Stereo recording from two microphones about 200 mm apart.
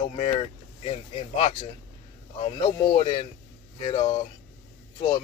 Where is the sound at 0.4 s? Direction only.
30° left (ahead or behind).